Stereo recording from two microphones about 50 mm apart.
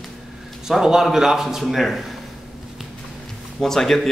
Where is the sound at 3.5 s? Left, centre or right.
Centre.